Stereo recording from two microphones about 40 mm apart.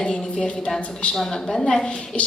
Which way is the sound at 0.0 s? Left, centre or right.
Left.